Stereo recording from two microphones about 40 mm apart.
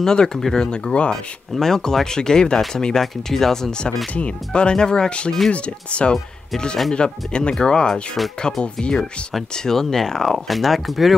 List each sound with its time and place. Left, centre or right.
0.0 s speech: centre
0.7 s speech: left
1.1 s speech: centre
4.5 s speech: left
10.5 s speech: centre